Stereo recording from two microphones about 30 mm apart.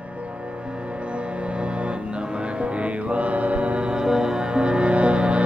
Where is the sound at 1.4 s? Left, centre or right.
Right.